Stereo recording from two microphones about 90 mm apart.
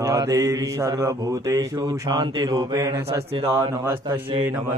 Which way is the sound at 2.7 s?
30° right (ahead or behind).